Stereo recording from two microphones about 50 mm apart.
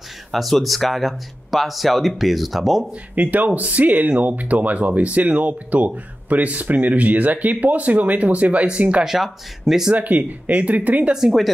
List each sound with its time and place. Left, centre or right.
0.3 s speech: centre
3.2 s speech: right
9.0 s speech: centre
9.9 s speech: right